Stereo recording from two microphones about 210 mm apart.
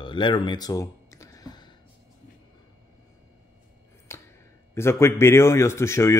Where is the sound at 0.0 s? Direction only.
25° left (ahead or behind).